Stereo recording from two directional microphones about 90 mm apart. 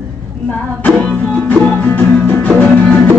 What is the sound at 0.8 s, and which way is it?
Music, 10° left (ahead or behind).